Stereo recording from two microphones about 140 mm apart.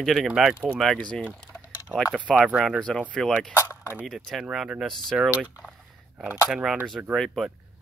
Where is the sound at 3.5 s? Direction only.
20° left (ahead or behind).